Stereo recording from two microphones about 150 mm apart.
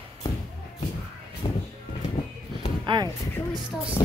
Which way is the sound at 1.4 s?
30° left (ahead or behind).